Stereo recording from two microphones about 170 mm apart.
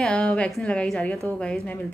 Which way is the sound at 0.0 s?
5° left (ahead or behind).